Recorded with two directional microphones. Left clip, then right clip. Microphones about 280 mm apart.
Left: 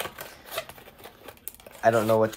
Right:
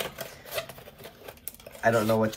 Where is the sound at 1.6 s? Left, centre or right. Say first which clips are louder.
Left 2 dB; centre.